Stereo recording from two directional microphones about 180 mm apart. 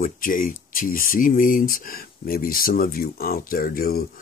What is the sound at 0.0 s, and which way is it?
Speech, 50° left (ahead or behind).